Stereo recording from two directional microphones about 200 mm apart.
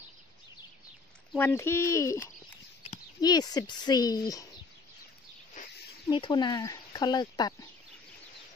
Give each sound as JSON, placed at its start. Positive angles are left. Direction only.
{"t": 1.3, "sound": "speech", "side_deg": 10}
{"t": 5.6, "sound": "snake", "side_deg": 40}
{"t": 6.0, "sound": "speech", "side_deg": 25}